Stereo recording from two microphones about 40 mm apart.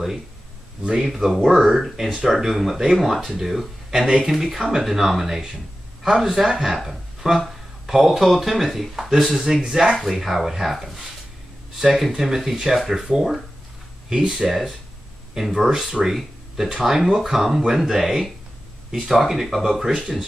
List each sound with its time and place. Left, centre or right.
1.0 s speech: centre
9.4 s speech: centre